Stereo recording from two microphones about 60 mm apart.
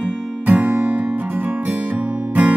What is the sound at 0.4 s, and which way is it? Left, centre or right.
Music, right.